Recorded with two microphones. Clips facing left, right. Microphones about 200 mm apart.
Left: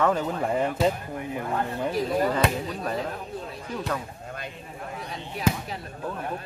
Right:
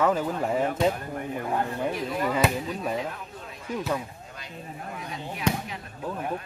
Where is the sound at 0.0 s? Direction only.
5° right (ahead or behind).